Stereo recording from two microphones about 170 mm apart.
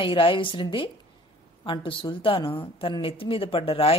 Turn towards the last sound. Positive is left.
turn(degrees=35)  # may be behind; listen again after turning